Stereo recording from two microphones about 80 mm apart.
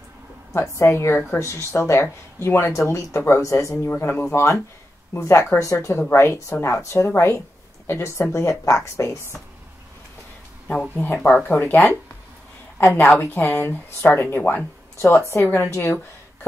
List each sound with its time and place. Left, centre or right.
0.5 s speech: left
4.3 s speech: left
11.4 s speech: left
15.0 s speech: left
15.7 s speech: left